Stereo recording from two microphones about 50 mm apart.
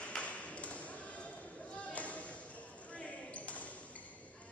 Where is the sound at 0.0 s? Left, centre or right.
Left.